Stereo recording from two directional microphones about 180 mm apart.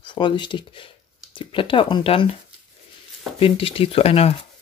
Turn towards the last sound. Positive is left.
turn(degrees=35)  # may be behind; listen again after turning